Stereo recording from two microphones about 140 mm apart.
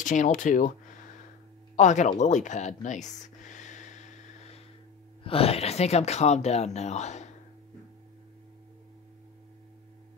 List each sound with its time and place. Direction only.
0.0 s speech: 65° left (ahead or behind)
1.8 s a sound: 60° left (ahead or behind)
5.2 s speech: 45° left (ahead or behind)